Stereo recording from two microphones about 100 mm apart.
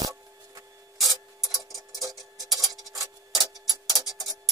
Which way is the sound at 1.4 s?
Centre (ahead or behind).